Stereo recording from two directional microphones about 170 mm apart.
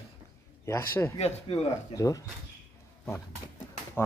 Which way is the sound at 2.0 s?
20° left (ahead or behind).